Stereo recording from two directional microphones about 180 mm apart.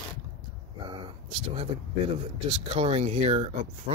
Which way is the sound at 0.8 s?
25° right (ahead or behind).